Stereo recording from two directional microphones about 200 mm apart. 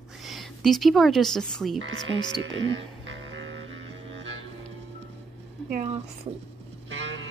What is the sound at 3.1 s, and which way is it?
Music, 70° right (ahead or behind).